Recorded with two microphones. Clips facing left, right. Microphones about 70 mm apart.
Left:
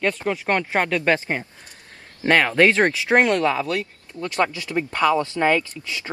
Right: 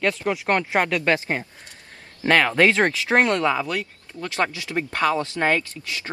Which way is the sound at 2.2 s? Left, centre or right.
Centre.